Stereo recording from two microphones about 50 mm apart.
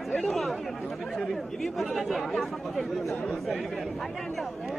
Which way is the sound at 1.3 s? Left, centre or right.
Centre.